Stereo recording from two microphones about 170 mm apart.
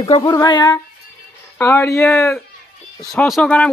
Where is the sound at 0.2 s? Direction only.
25° left (ahead or behind).